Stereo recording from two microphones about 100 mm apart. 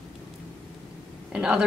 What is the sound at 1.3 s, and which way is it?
Speech, 10° right (ahead or behind).